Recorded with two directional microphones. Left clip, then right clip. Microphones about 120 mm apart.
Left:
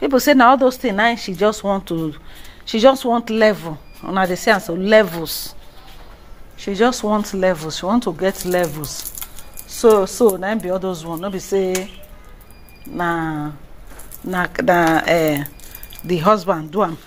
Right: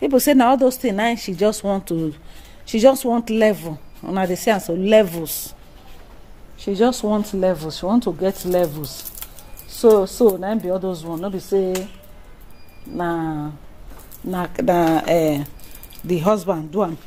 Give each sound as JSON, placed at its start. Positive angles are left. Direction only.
{"t": 0.0, "sound": "speech", "side_deg": -25}
{"t": 6.6, "sound": "speech", "side_deg": -20}
{"t": 9.8, "sound": "speech", "side_deg": -15}
{"t": 12.9, "sound": "speech", "side_deg": -5}
{"t": 14.3, "sound": "speech", "side_deg": -15}